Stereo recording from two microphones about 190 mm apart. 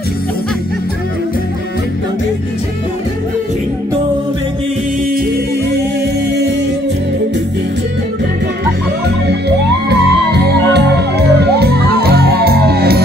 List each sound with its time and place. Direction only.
9.3 s music: 65° right (ahead or behind)